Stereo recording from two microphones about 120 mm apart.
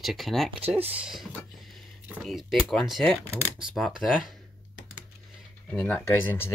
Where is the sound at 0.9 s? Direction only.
5° right (ahead or behind).